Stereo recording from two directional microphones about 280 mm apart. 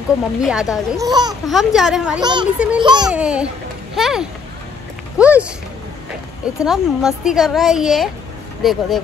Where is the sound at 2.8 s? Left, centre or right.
Centre.